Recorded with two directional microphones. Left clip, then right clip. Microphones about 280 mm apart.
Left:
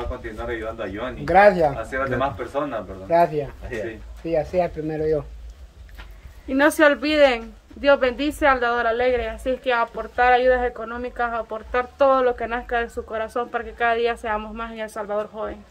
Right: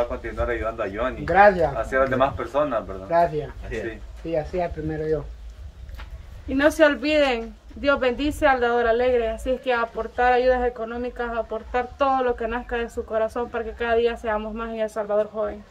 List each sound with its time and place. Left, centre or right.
0.6 s speech: centre
1.2 s speech: left
1.9 s speech: centre
3.1 s speech: left
4.3 s speech: left
6.5 s a woman's voice: centre